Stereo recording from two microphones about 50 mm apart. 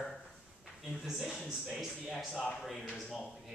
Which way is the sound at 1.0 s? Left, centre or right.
Centre.